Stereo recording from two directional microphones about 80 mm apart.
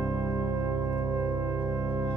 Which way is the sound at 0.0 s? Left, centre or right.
Right.